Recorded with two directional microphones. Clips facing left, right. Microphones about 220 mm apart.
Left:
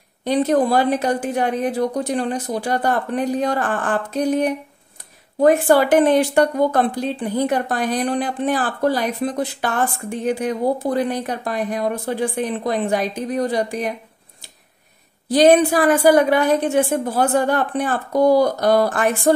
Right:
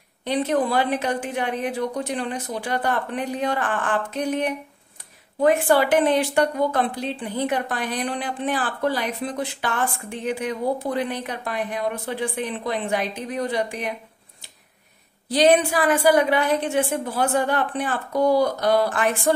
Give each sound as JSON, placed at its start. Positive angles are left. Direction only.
{"t": 0.2, "sound": "a woman's voice", "side_deg": 40}
{"t": 15.2, "sound": "a woman's voice", "side_deg": 45}